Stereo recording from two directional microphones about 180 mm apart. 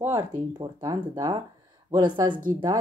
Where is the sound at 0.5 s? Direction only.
20° right (ahead or behind).